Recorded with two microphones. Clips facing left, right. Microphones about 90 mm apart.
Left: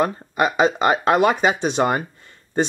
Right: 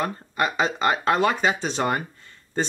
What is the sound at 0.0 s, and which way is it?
Speech, 20° left (ahead or behind).